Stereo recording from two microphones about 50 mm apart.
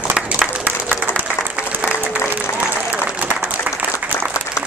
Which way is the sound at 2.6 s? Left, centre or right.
Right.